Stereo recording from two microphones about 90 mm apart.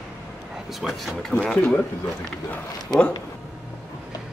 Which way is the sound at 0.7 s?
Centre (ahead or behind).